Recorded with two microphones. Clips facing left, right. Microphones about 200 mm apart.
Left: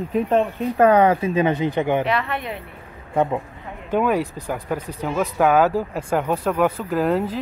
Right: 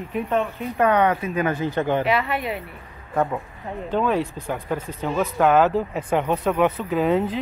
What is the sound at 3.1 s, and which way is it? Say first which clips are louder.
Speech: left 3 dB; 20° left (ahead or behind).